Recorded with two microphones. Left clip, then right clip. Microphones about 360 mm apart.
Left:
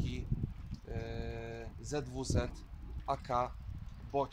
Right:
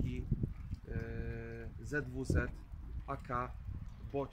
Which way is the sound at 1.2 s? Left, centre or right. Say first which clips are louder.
Left 3 dB; left.